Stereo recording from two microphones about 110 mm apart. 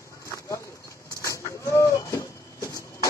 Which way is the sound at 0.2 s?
30° left (ahead or behind).